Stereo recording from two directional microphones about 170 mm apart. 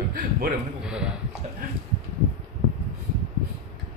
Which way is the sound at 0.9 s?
5° right (ahead or behind).